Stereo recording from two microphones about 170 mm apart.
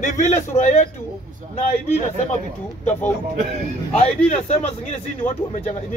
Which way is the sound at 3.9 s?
40° left (ahead or behind).